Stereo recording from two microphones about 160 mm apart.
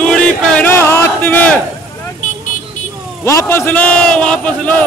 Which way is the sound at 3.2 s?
15° left (ahead or behind).